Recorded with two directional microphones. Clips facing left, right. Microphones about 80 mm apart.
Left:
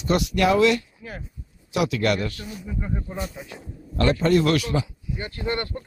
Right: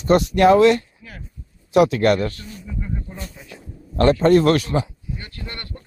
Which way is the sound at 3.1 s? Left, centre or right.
Centre.